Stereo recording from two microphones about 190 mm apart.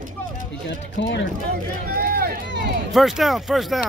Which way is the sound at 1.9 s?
50° right (ahead or behind).